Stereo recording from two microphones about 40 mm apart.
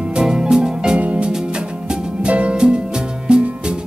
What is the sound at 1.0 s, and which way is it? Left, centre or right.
Music, right.